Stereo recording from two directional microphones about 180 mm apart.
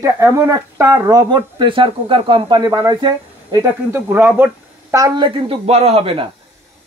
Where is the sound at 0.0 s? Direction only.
15° right (ahead or behind).